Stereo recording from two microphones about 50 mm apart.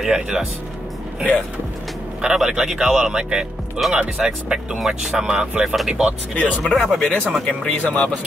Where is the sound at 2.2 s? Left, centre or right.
Centre.